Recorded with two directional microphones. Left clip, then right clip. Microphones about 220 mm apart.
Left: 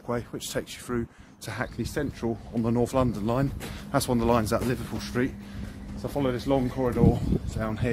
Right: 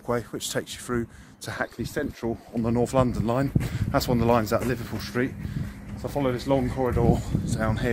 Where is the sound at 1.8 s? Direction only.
10° right (ahead or behind).